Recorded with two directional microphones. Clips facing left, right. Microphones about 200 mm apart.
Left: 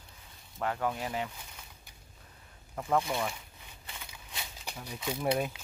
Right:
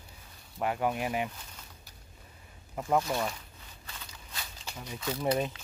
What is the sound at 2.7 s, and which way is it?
Speech, 10° right (ahead or behind).